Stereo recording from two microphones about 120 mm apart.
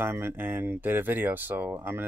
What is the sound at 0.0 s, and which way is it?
Speech, 20° right (ahead or behind).